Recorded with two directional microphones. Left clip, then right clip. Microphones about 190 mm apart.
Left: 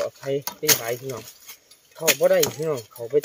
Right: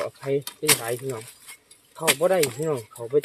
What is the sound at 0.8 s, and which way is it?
Speech, 20° right (ahead or behind).